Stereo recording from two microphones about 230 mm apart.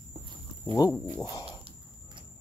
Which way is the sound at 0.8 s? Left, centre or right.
Centre.